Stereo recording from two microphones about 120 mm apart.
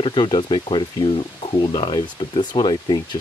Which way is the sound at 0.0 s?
40° left (ahead or behind).